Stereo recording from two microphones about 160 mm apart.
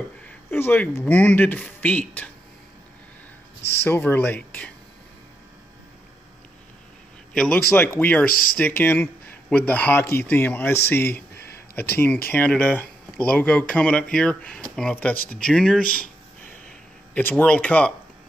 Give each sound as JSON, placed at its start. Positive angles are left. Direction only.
{"t": 0.5, "sound": "speech", "side_deg": 10}
{"t": 3.8, "sound": "speech", "side_deg": 15}
{"t": 7.3, "sound": "speech", "side_deg": 10}
{"t": 8.3, "sound": "speech", "side_deg": 65}
{"t": 8.5, "sound": "speech", "side_deg": 10}
{"t": 15.8, "sound": "speech", "side_deg": 60}
{"t": 16.6, "sound": "a sound", "side_deg": 10}